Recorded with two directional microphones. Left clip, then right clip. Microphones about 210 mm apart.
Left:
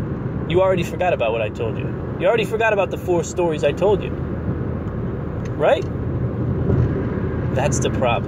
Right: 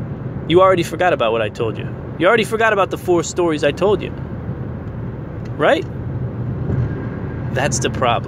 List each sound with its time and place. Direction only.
0.5 s speech: 50° right (ahead or behind)
5.6 s speech: 40° right (ahead or behind)
7.5 s speech: 40° right (ahead or behind)